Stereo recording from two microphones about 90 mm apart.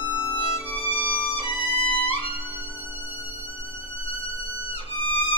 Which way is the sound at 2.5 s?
20° right (ahead or behind).